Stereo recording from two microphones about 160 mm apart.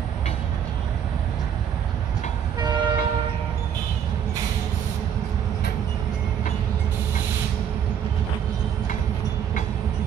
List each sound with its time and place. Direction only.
2.6 s train: 25° right (ahead or behind)